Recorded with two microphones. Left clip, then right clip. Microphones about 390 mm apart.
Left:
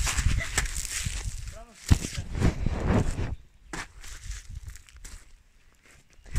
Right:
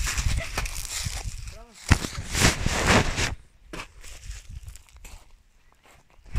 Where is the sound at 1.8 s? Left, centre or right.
Right.